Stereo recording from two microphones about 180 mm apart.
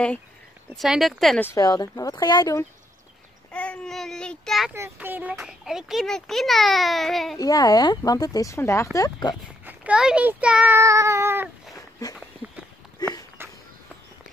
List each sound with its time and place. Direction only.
0.7 s a child's voice: centre (ahead or behind)
1.4 s speech: 20° left (ahead or behind)
3.5 s a child's voice: 5° left (ahead or behind)
4.7 s a child's voice: 10° right (ahead or behind)
7.3 s speech: 20° left (ahead or behind)
9.7 s speech: 5° right (ahead or behind)
11.7 s dog: 20° left (ahead or behind)
12.4 s a sound: 10° right (ahead or behind)
13.4 s walk: 15° right (ahead or behind)